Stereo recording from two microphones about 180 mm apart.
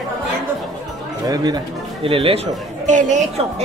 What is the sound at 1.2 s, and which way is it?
Speech, 20° right (ahead or behind).